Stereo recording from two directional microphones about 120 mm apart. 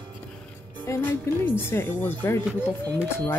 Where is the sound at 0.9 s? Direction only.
15° left (ahead or behind).